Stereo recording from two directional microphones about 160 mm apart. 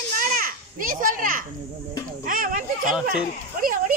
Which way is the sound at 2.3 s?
60° right (ahead or behind).